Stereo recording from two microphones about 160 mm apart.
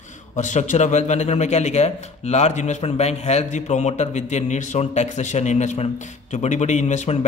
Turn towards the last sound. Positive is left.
turn(degrees=45)  # may be behind; listen again after turning